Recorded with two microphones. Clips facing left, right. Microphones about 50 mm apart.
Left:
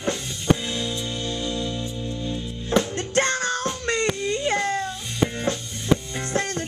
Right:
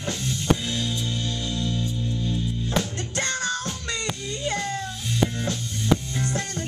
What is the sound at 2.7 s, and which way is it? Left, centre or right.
Music, left.